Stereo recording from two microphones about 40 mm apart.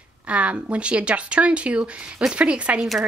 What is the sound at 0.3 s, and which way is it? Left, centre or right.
A woman's voice, right.